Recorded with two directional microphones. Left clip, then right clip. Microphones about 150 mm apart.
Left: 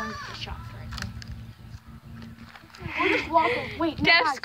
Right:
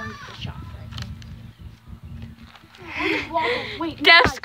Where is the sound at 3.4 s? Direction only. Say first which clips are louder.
Right 2 dB; 50° right (ahead or behind).